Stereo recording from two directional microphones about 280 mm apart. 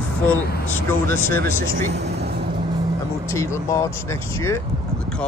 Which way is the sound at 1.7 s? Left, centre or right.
Right.